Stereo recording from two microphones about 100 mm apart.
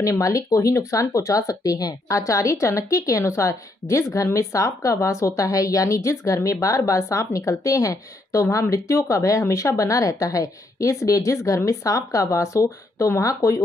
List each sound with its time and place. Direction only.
0.0 s speech: 35° left (ahead or behind)